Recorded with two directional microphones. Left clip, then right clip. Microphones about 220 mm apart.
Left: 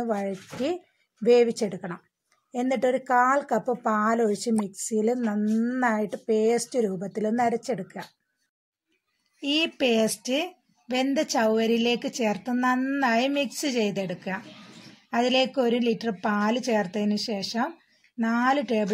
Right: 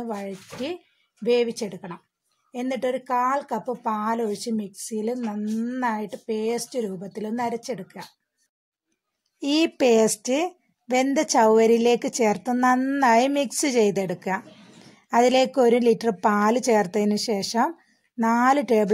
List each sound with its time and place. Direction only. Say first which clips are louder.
0.0 s a woman's voice: left 3 dB; centre (ahead or behind)
9.4 s speech: right 3 dB; 45° right (ahead or behind)